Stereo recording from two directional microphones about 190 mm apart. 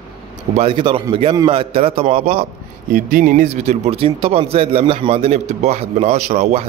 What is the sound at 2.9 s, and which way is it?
Speech, 45° right (ahead or behind).